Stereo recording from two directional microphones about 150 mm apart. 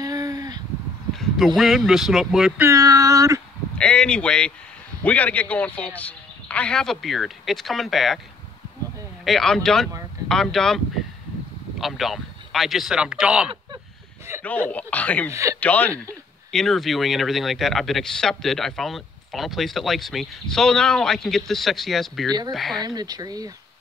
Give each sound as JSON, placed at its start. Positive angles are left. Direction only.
{"t": 0.0, "sound": "a sound", "side_deg": -25}
{"t": 1.1, "sound": "speech", "side_deg": 0}
{"t": 2.6, "sound": "speech", "side_deg": -20}
{"t": 3.7, "sound": "speech", "side_deg": 5}
{"t": 9.2, "sound": "speech", "side_deg": 0}
{"t": 11.8, "sound": "speech", "side_deg": 0}
{"t": 14.4, "sound": "speech", "side_deg": 10}
{"t": 15.3, "sound": "speech", "side_deg": -20}
{"t": 15.6, "sound": "speech", "side_deg": 10}
{"t": 22.8, "sound": "speech", "side_deg": -25}